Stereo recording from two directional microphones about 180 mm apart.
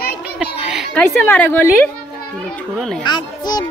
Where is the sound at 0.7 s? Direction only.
5° left (ahead or behind).